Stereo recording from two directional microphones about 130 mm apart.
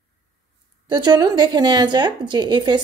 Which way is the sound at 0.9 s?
35° right (ahead or behind).